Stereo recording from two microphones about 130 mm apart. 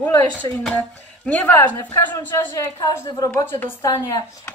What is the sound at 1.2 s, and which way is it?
Speech, 15° left (ahead or behind).